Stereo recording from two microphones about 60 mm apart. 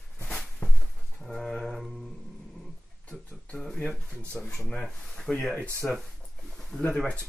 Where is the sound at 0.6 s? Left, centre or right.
Left.